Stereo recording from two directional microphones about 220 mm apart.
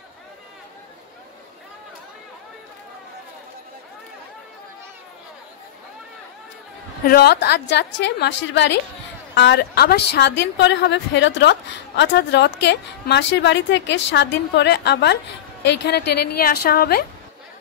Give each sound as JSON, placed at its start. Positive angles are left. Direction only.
{"t": 7.1, "sound": "a woman's voice", "side_deg": 45}